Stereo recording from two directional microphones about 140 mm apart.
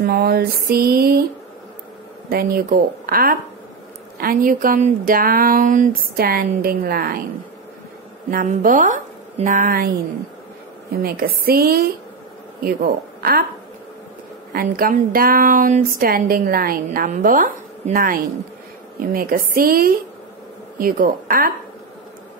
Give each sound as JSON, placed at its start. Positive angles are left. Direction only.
{"t": 0.0, "sound": "speech", "side_deg": -90}
{"t": 2.2, "sound": "speech", "side_deg": -90}
{"t": 5.1, "sound": "speech", "side_deg": -90}
{"t": 8.5, "sound": "a woman's voice", "side_deg": -65}
{"t": 14.5, "sound": "speech", "side_deg": -85}
{"t": 16.0, "sound": "speech", "side_deg": -90}
{"t": 17.2, "sound": "speech", "side_deg": -70}